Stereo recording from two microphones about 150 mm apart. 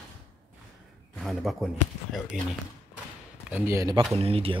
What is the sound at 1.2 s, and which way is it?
Speech, centre (ahead or behind).